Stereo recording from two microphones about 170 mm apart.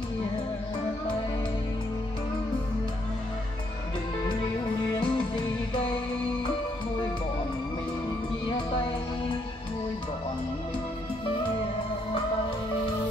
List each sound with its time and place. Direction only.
5.0 s music: 30° left (ahead or behind)
8.5 s music: 30° left (ahead or behind)